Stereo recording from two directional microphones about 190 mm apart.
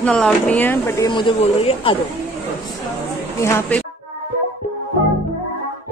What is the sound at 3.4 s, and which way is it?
Speech, 10° left (ahead or behind).